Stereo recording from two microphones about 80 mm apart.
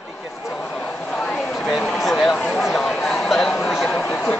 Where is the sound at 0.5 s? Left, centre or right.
Centre.